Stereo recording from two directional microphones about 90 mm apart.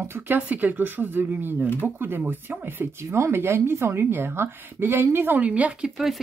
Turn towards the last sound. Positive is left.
turn(degrees=-10)  # may be behind; listen again after turning